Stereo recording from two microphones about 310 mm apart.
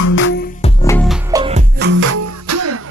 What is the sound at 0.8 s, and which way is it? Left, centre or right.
Music, centre.